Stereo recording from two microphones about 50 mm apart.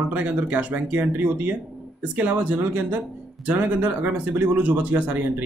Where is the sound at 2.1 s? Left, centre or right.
Right.